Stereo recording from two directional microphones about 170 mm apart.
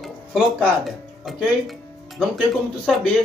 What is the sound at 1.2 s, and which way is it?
Speech, centre (ahead or behind).